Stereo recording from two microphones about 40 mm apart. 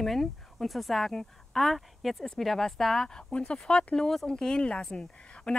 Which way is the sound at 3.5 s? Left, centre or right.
Left.